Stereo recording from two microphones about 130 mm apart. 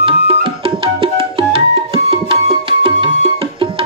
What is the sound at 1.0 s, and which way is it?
Music, 45° right (ahead or behind).